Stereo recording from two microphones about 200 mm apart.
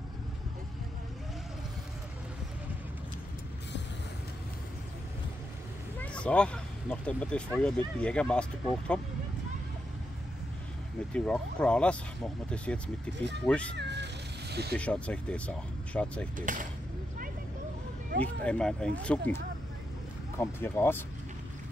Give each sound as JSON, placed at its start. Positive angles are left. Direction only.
{"t": 5.9, "sound": "speech", "side_deg": 5}
{"t": 11.1, "sound": "speech", "side_deg": 5}
{"t": 13.7, "sound": "cat", "side_deg": -60}
{"t": 14.8, "sound": "speech", "side_deg": 5}
{"t": 16.3, "sound": "speech", "side_deg": -40}
{"t": 18.2, "sound": "speech", "side_deg": 5}